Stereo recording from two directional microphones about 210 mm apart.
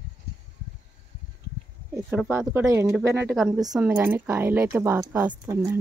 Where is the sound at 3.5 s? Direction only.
15° right (ahead or behind).